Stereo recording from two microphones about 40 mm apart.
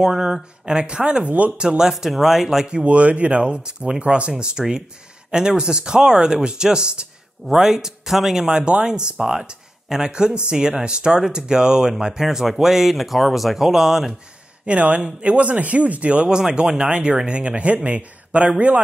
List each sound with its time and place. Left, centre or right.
0.0 s speech: centre
1.9 s speech: centre
2.6 s speech: right
4.3 s speech: centre
8.5 s speech: right
9.2 s speech: centre
14.7 s speech: right
16.3 s speech: centre